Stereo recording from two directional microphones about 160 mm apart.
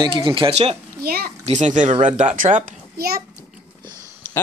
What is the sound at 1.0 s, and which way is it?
Speech, 70° right (ahead or behind).